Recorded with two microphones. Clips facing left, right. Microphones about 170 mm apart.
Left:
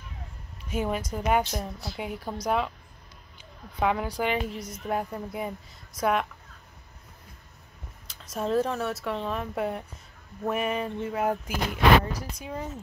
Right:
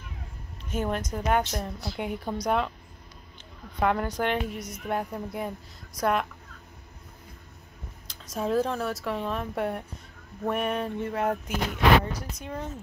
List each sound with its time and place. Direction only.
0.7 s speech: 5° left (ahead or behind)
3.8 s speech: 5° left (ahead or behind)
4.6 s speech: 30° left (ahead or behind)
4.8 s speech: centre (ahead or behind)
8.1 s speech: centre (ahead or behind)